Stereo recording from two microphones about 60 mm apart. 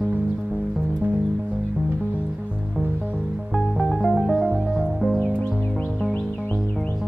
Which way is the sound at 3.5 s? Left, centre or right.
Centre.